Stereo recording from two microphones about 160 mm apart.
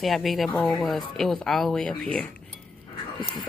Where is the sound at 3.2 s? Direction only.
30° left (ahead or behind).